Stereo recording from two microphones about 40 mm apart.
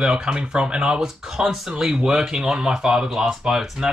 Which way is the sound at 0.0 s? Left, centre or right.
Centre.